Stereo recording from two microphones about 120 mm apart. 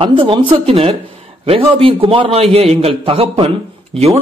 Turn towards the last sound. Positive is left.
turn(degrees=-50)  # may be behind; listen again after turning